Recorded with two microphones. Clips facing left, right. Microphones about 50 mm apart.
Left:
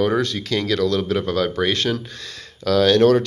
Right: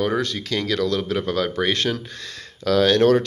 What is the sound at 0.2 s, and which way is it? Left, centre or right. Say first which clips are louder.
Speech: left 2 dB; centre.